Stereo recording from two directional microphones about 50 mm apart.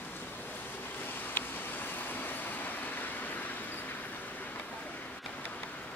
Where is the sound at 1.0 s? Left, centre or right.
Left.